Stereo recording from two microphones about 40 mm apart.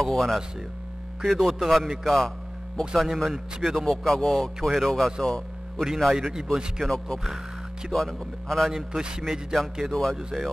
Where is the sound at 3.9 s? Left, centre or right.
Centre.